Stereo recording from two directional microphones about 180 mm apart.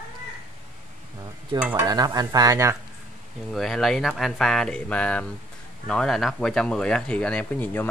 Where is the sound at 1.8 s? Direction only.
20° right (ahead or behind).